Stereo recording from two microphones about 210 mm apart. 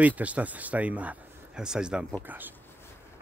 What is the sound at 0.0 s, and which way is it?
Speech, 5° right (ahead or behind).